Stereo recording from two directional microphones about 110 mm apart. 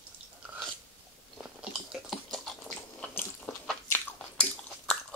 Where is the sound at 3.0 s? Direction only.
20° left (ahead or behind).